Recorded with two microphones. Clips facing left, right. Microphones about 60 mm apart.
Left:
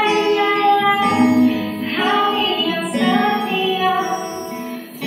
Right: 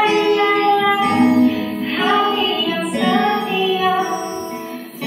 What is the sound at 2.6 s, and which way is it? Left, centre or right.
Music, centre.